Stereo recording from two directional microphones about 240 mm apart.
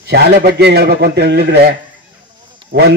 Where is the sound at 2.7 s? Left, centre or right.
Right.